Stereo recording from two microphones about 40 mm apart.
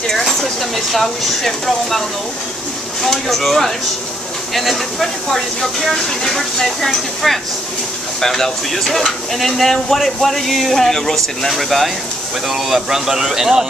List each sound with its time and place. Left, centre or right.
0.1 s speech: centre
5.3 s speech: centre
12.4 s speech: centre